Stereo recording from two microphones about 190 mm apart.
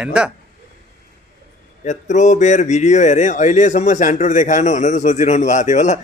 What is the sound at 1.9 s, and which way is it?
Speech, 40° left (ahead or behind).